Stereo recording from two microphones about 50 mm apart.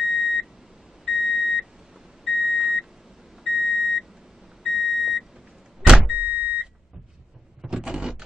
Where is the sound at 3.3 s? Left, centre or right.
Centre.